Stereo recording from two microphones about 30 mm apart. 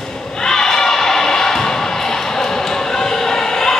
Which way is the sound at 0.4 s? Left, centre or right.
Centre.